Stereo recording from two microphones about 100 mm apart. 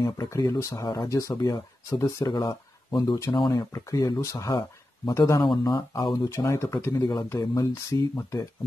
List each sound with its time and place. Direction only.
0.0 s speech: 35° left (ahead or behind)
3.5 s speech: 35° left (ahead or behind)
7.0 s speech: 40° left (ahead or behind)